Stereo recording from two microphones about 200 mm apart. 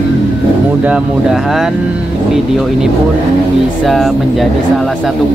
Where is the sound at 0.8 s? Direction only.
5° right (ahead or behind).